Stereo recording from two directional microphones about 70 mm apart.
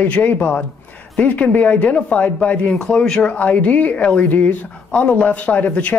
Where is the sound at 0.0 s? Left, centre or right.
Left.